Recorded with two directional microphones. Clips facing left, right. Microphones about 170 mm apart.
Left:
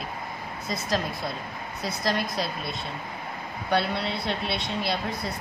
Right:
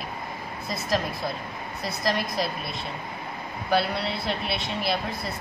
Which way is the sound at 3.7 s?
Centre (ahead or behind).